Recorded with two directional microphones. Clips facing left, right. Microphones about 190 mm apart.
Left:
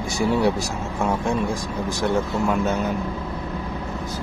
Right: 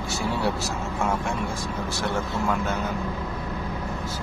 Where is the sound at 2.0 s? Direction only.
20° left (ahead or behind).